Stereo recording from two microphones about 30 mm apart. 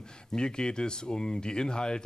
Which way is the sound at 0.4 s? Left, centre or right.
Left.